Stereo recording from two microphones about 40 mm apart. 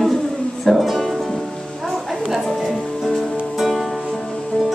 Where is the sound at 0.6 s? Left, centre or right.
Centre.